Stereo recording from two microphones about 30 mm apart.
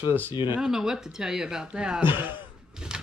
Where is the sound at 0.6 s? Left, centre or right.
Centre.